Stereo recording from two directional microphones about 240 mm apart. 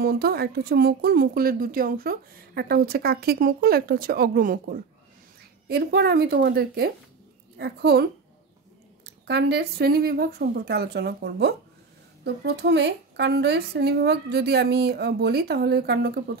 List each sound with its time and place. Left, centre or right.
0.0 s speech: right
12.5 s speech: right